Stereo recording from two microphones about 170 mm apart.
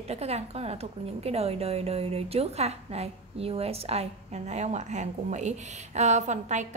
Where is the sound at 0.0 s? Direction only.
40° right (ahead or behind).